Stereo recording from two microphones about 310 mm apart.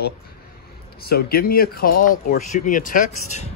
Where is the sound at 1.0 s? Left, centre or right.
Left.